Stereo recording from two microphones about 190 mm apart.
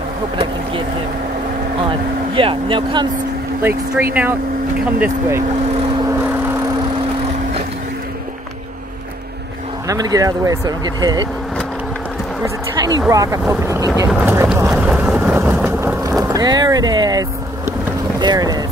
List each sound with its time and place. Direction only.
1.9 s speech: 25° right (ahead or behind)
3.6 s speech: 10° right (ahead or behind)
9.8 s speech: 20° right (ahead or behind)
12.4 s speech: 20° right (ahead or behind)
13.1 s vehicle: 15° right (ahead or behind)
18.2 s speech: 20° right (ahead or behind)